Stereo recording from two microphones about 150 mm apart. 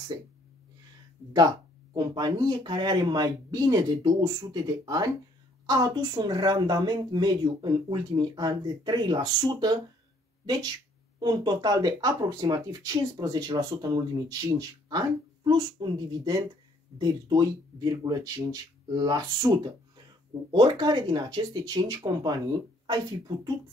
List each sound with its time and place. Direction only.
2.0 s speech: 25° right (ahead or behind)